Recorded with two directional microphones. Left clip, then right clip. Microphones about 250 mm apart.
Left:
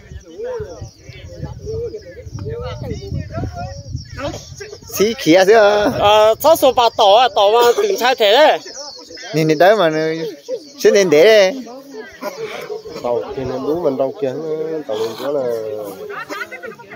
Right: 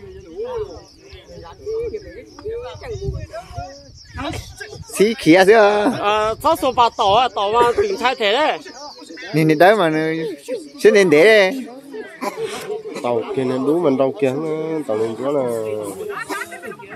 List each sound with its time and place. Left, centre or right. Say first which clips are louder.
4.9 s speech: even; centre
5.9 s speech: left 7 dB; left
9.2 s speech: left 1 dB; centre
12.2 s speech: right 1 dB; right